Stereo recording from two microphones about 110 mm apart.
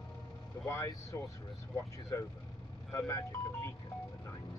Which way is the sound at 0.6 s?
25° left (ahead or behind).